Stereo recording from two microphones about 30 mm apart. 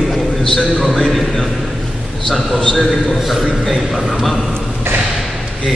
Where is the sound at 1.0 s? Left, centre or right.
Centre.